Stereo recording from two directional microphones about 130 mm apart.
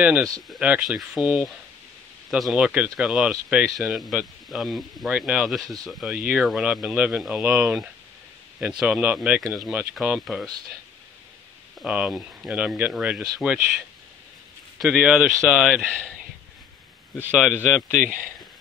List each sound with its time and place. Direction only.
0.5 s speech: 10° right (ahead or behind)
11.8 s speech: 5° right (ahead or behind)
17.4 s speech: centre (ahead or behind)
17.9 s speech: 90° right